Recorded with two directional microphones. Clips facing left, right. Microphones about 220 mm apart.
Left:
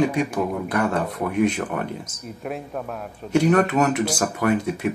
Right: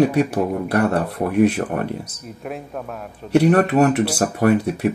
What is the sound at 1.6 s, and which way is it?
Speech, 40° right (ahead or behind).